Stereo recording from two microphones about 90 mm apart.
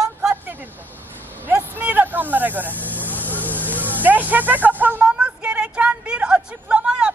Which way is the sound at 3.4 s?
20° left (ahead or behind).